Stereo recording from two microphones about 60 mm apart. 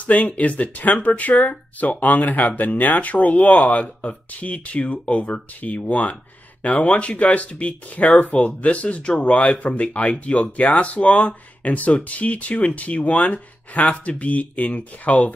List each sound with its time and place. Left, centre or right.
0.0 s speech: left